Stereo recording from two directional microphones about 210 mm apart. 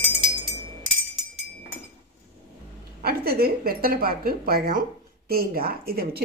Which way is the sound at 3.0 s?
45° right (ahead or behind).